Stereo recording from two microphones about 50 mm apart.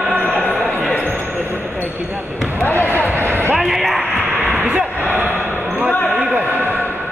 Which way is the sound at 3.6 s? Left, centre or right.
Centre.